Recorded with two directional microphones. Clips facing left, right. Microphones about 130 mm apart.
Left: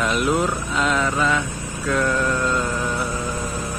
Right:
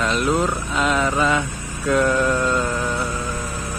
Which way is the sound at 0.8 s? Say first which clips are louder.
Right 2 dB; 15° right (ahead or behind).